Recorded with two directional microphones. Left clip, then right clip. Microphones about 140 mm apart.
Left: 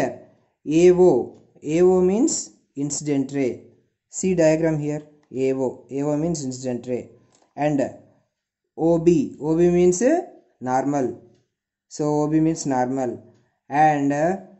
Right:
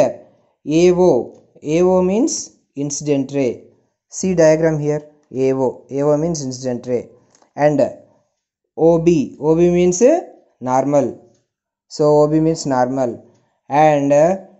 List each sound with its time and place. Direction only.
0.7 s speech: 25° right (ahead or behind)
6.3 s speech: 5° left (ahead or behind)
6.9 s speech: 20° right (ahead or behind)